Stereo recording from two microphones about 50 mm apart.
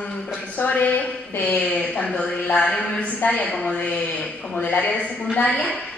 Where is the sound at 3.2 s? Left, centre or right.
Left.